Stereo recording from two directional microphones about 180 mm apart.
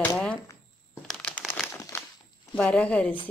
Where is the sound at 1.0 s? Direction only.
5° left (ahead or behind).